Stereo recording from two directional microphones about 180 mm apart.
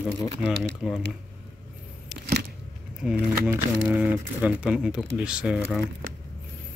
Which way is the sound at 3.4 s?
10° right (ahead or behind).